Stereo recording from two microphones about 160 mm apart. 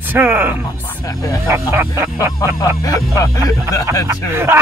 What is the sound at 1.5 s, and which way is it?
Speech, 15° right (ahead or behind).